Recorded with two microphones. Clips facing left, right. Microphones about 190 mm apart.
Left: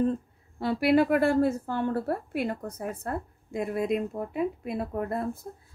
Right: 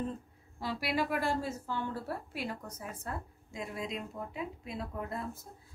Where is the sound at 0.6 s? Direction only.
60° left (ahead or behind).